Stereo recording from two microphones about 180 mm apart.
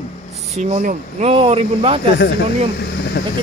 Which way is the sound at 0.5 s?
40° right (ahead or behind).